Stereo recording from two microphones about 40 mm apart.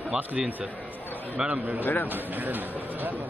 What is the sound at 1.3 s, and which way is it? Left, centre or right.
Speech, centre.